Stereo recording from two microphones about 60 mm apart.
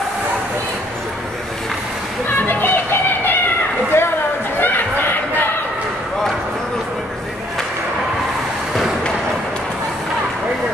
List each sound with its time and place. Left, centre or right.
2.2 s music: left
3.9 s a sound: left
4.6 s music: left